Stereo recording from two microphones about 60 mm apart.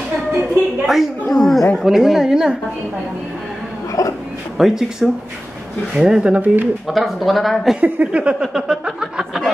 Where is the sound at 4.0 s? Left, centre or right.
Left.